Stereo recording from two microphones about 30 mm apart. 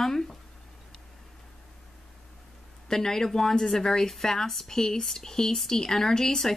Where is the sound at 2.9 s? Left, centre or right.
Centre.